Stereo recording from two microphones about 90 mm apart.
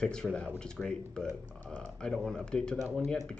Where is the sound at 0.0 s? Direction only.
10° left (ahead or behind).